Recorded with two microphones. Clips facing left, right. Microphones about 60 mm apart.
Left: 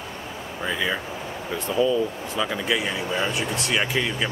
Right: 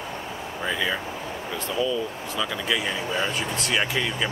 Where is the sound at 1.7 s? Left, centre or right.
Left.